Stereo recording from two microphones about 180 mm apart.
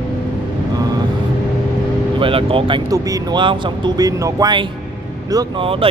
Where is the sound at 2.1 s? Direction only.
30° right (ahead or behind).